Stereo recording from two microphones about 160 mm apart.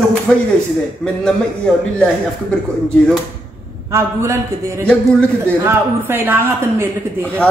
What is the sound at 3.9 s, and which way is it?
Speech, 20° right (ahead or behind).